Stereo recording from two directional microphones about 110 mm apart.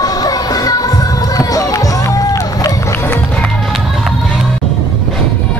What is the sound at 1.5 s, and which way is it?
Run, 30° left (ahead or behind).